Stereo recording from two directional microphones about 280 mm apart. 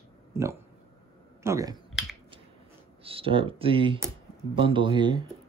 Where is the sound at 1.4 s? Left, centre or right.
Centre.